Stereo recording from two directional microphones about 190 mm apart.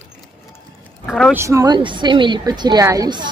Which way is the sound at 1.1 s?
Centre (ahead or behind).